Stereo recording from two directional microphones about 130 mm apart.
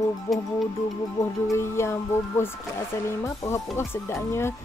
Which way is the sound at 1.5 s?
20° left (ahead or behind).